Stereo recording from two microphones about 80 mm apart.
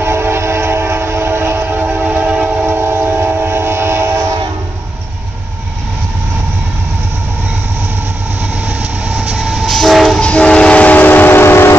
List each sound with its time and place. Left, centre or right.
0.0 s train: right
8.6 s train: centre
10.2 s train: centre; by 11.7 s left